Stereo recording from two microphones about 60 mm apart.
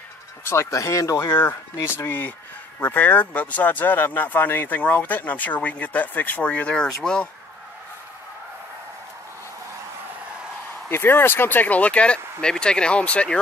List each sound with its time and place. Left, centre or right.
0.5 s speech: left
1.3 s speech: left; by 7.2 s centre
10.9 s speech: left; by 13.4 s centre